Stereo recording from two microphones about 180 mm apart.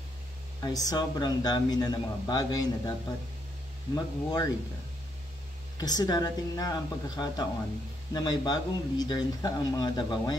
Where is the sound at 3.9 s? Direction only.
20° left (ahead or behind).